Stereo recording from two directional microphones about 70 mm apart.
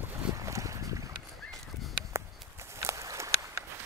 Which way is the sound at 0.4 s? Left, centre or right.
Right.